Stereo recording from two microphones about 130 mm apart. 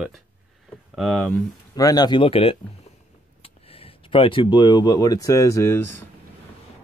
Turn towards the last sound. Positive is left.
turn(degrees=20)  # may be behind; listen again after turning